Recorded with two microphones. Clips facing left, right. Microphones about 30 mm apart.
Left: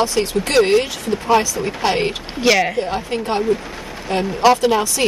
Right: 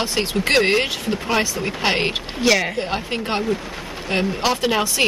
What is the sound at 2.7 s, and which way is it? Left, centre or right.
Speech, right.